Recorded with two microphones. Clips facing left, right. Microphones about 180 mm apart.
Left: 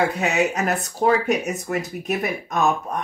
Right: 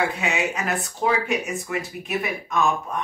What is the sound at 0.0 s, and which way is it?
Speech, 40° left (ahead or behind).